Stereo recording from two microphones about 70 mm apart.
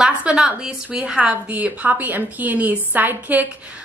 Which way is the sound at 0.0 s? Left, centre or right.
Centre.